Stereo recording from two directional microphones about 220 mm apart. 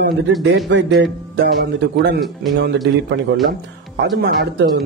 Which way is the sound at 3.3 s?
60° right (ahead or behind).